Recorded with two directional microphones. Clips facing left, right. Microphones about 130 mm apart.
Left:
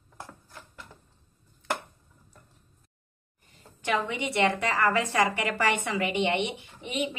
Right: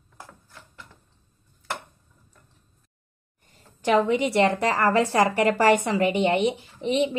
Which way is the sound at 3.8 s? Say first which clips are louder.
Right 8 dB; 35° right (ahead or behind).